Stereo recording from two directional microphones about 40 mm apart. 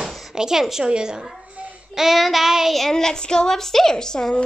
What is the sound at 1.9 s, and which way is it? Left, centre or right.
Child singing, centre.